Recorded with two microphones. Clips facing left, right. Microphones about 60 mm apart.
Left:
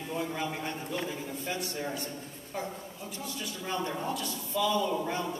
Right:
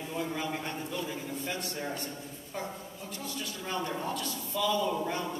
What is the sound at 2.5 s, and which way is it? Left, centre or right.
Speech, centre.